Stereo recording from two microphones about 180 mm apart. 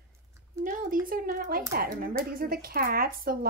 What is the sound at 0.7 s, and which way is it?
Speech, 50° right (ahead or behind).